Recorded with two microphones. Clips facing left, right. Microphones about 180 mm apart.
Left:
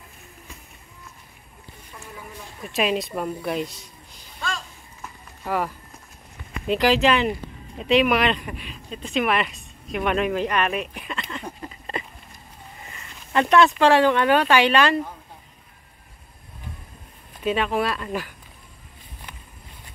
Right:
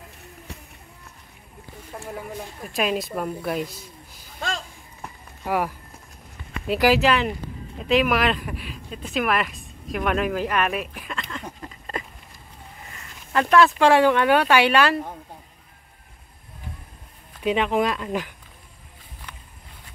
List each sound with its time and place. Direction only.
1.9 s a sound: 50° right (ahead or behind)
2.7 s speech: centre (ahead or behind)
5.4 s speech: 10° right (ahead or behind)
6.7 s speech: 5° right (ahead or behind)
9.8 s a sound: centre (ahead or behind)
13.3 s speech: centre (ahead or behind)
17.4 s speech: 15° right (ahead or behind)